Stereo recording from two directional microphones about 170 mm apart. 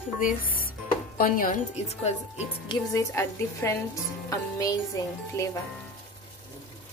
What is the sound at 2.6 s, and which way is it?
A woman's voice, 20° left (ahead or behind).